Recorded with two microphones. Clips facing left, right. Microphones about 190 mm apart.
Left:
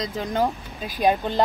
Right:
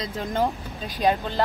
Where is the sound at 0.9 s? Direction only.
15° left (ahead or behind).